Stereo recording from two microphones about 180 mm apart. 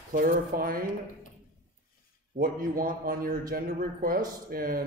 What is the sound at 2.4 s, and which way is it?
A man's voice, 55° right (ahead or behind).